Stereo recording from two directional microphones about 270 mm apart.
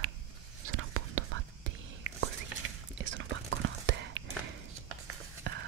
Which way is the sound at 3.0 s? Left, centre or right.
Right.